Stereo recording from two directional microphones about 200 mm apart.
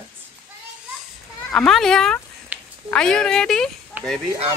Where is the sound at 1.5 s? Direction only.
Centre (ahead or behind).